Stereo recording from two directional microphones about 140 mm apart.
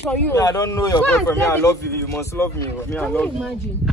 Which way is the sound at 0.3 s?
25° left (ahead or behind).